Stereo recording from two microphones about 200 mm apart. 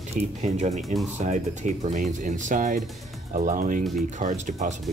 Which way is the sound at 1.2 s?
35° right (ahead or behind).